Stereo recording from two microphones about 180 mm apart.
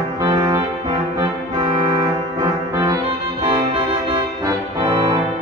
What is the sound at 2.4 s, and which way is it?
Music, 20° right (ahead or behind).